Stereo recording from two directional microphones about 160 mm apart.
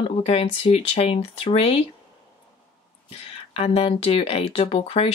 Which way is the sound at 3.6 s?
35° left (ahead or behind).